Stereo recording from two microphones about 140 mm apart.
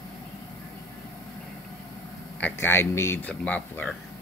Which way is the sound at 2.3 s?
15° left (ahead or behind).